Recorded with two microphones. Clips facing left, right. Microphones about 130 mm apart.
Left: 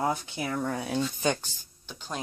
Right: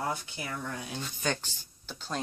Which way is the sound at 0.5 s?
55° left (ahead or behind).